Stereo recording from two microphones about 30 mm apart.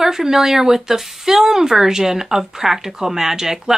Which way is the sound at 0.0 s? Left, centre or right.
Centre.